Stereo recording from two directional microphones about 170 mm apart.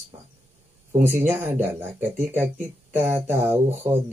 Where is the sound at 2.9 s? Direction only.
10° right (ahead or behind).